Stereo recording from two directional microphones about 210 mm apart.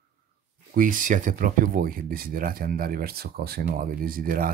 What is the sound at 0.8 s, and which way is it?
Speech, 40° right (ahead or behind).